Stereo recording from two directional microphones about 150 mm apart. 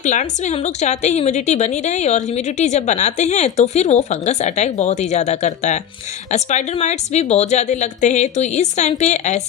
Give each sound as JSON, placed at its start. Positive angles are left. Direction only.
{"t": 0.0, "sound": "a woman's voice", "side_deg": 55}